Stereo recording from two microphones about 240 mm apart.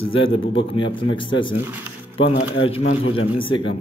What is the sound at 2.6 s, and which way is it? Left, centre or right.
Speech, left.